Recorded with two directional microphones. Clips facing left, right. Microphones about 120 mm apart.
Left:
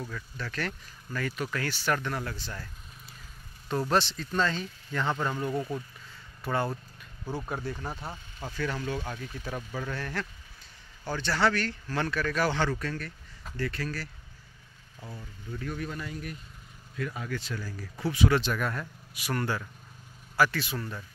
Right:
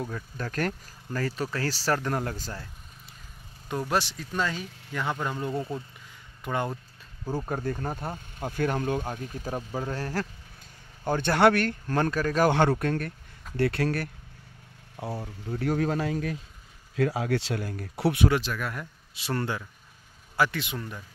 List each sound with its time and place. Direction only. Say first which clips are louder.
0.4 s speech: right 5 dB; 45° right (ahead or behind)
2.5 s vehicle: right 1 dB; 25° right (ahead or behind)
3.6 s speech: left 1 dB; 10° right (ahead or behind)
5.5 s speech: even; 25° right (ahead or behind)
7.4 s speech: right 4 dB; 45° right (ahead or behind)
11.1 s speech: right 6 dB; 50° right (ahead or behind)
12.4 s speech: right 6 dB; 55° right (ahead or behind)
13.6 s speech: right 8 dB; 70° right (ahead or behind)
15.0 s speech: right 10 dB; 75° right (ahead or behind)
18.4 s speech: left 2 dB; 5° right (ahead or behind)
19.1 s speech: right 1 dB; 30° right (ahead or behind)